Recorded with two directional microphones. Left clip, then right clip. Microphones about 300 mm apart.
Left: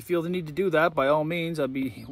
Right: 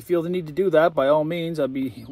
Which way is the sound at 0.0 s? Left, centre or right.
Centre.